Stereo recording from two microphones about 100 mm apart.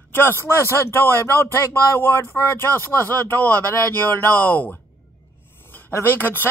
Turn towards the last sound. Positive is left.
turn(degrees=20)  # may be behind; listen again after turning